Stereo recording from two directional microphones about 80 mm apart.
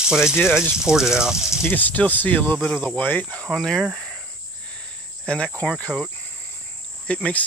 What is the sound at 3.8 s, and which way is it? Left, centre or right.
Speech, centre.